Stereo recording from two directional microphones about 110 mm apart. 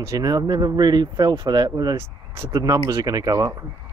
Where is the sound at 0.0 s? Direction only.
30° right (ahead or behind).